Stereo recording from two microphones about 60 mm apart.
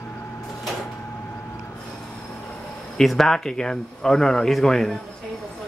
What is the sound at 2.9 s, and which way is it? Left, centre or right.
Speech, centre.